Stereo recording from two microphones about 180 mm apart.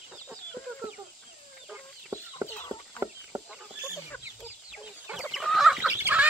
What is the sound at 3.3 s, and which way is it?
Chicken, 15° right (ahead or behind).